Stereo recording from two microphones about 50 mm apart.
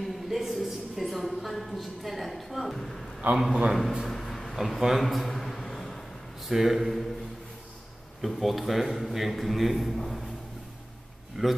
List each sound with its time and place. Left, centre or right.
0.0 s a sound: centre
3.2 s a man's voice: right
4.0 s a sound: centre
6.5 s a man's voice: centre
8.2 s a man's voice: centre
11.4 s a man's voice: centre